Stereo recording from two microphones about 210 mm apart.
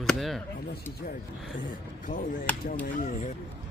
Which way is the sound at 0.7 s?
45° left (ahead or behind).